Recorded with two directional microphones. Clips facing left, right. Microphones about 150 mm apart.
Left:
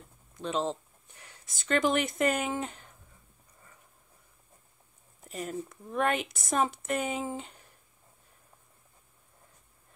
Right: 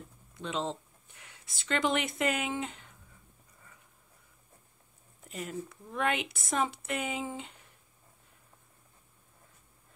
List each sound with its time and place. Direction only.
0.4 s speech: 40° left (ahead or behind)
5.3 s speech: 40° left (ahead or behind)